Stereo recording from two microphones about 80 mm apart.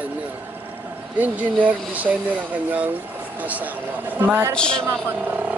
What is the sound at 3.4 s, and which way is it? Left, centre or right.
Speech, centre.